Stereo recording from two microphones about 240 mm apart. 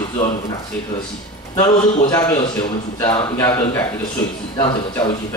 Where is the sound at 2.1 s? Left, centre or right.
Centre.